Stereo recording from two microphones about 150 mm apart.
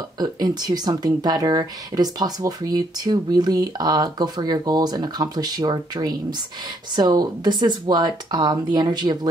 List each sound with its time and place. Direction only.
0.2 s speech: 25° right (ahead or behind)